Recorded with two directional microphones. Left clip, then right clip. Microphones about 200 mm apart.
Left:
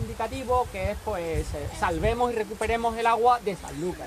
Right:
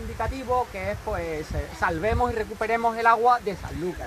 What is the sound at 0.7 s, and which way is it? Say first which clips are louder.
Speech: even; 5° right (ahead or behind).